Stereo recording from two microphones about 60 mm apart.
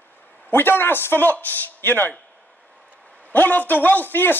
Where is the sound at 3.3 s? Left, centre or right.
Left.